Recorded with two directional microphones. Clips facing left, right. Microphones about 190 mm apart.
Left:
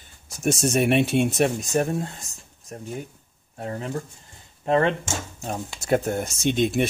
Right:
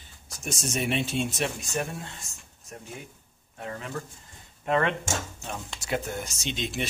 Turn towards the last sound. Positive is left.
turn(degrees=55)  # may be behind; listen again after turning